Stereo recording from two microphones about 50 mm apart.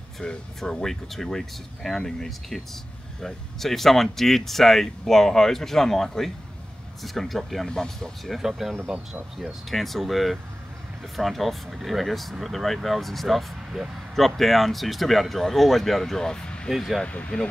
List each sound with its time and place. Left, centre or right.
0.2 s speech: left
0.6 s speech: centre
8.4 s speech: centre
8.7 s speech: right
9.5 s speech: centre
16.7 s speech: centre
17.0 s speech: left